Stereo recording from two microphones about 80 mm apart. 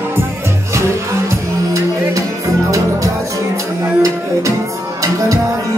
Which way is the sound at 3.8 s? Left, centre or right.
Right.